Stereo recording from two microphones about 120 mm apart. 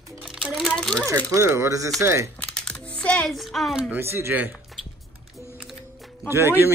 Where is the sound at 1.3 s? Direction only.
25° right (ahead or behind).